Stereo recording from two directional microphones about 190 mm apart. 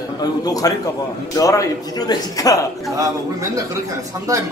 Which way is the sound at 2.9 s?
15° right (ahead or behind).